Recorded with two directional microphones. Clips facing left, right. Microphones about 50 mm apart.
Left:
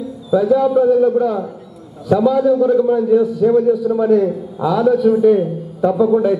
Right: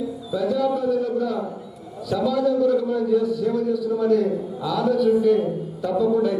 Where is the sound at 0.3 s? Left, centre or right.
Left.